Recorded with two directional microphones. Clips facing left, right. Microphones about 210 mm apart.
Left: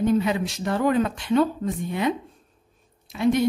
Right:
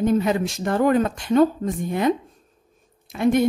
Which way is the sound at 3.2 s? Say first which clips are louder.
Right 2 dB; 50° right (ahead or behind).